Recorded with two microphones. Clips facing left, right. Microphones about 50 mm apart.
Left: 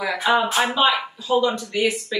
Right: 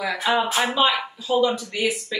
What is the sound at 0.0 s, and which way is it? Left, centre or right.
Speech, centre.